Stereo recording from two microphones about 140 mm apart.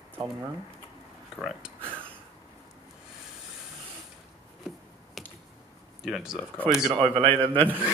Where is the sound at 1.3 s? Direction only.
Centre (ahead or behind).